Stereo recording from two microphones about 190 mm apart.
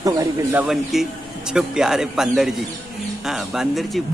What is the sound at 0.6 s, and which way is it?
Speech, centre (ahead or behind).